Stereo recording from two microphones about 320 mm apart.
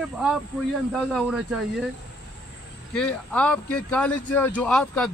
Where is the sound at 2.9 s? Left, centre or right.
Centre.